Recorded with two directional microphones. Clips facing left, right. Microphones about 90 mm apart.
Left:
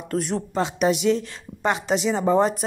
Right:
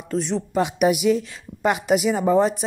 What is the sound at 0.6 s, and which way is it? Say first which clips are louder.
A woman's voice: right 2 dB; 10° right (ahead or behind).